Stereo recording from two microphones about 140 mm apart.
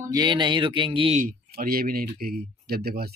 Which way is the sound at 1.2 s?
90° right.